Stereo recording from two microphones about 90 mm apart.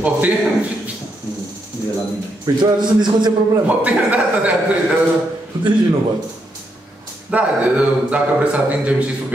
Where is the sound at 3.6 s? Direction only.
15° right (ahead or behind).